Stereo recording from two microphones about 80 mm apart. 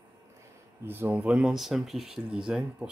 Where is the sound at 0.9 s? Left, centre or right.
Right.